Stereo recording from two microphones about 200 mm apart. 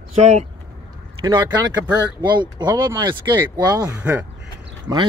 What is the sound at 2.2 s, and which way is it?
Speech, 20° right (ahead or behind).